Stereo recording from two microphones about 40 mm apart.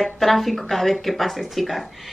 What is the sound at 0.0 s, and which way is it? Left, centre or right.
Speech, centre.